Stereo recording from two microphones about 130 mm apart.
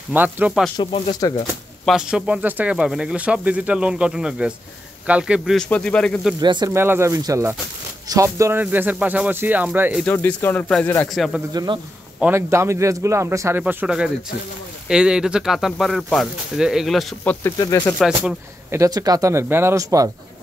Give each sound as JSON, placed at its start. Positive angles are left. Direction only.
{"t": 0.1, "sound": "speech", "side_deg": -15}
{"t": 1.2, "sound": "speech", "side_deg": 30}
{"t": 1.9, "sound": "speech", "side_deg": -5}
{"t": 5.6, "sound": "speech", "side_deg": 10}
{"t": 6.4, "sound": "speech", "side_deg": -35}
{"t": 6.7, "sound": "speech", "side_deg": -20}
{"t": 10.0, "sound": "speech", "side_deg": 15}
{"t": 11.1, "sound": "speech", "side_deg": 0}
{"t": 11.5, "sound": "speech", "side_deg": -35}
{"t": 12.2, "sound": "speech", "side_deg": -20}
{"t": 17.2, "sound": "speech", "side_deg": 10}
{"t": 17.6, "sound": "speech", "side_deg": 20}
{"t": 17.9, "sound": "speech", "side_deg": -5}
{"t": 18.7, "sound": "speech", "side_deg": -25}